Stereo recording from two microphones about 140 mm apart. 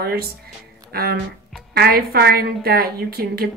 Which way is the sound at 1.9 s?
90° right.